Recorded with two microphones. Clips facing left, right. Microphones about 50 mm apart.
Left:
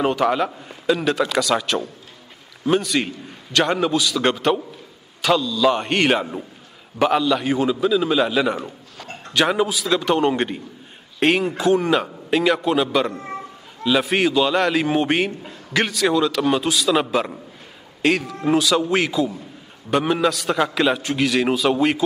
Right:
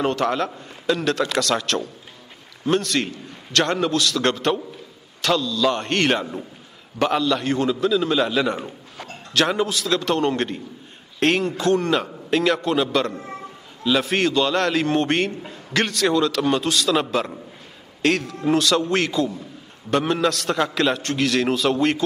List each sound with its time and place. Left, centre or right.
0.0 s a man's voice: centre
13.1 s a man's voice: left
13.8 s a man's voice: centre